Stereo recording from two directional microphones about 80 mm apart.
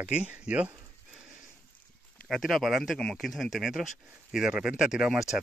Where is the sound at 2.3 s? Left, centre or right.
Centre.